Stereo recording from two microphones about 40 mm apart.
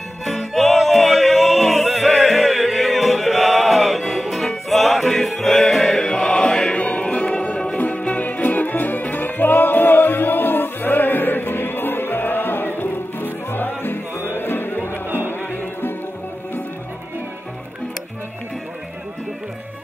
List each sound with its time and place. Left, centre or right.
0.2 s music: centre
6.8 s music: left
7.7 s music: left